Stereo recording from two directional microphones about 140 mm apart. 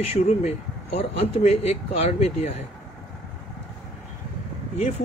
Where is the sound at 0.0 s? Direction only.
45° left (ahead or behind).